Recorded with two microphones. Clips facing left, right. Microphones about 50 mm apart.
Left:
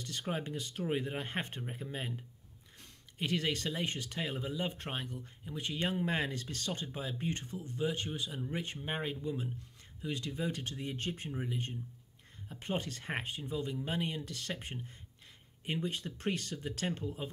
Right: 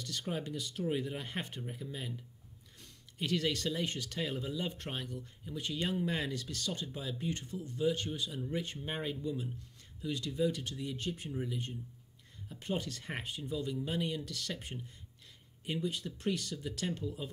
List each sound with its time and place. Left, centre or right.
0.0 s speech: left
2.8 s speech: left